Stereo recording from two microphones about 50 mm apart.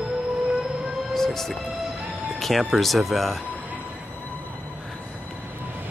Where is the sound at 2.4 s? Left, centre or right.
Centre.